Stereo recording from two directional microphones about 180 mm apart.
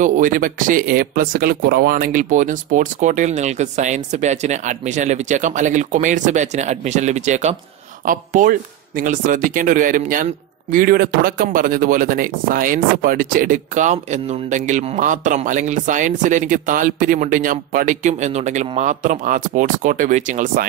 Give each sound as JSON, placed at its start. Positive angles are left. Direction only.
{"t": 0.0, "sound": "speech", "side_deg": -45}